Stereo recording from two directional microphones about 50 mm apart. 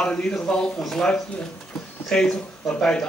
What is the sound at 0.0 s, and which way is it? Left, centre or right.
A man's voice, centre.